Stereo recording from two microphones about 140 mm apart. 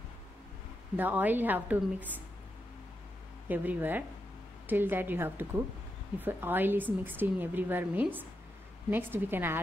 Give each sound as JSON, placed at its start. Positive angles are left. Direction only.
{"t": 0.9, "sound": "a woman's voice", "side_deg": -10}
{"t": 3.4, "sound": "a woman's voice", "side_deg": -15}